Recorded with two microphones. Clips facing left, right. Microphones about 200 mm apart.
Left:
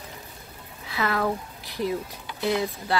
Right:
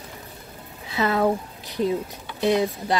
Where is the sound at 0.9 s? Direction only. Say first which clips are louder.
Right 5 dB; 20° right (ahead or behind).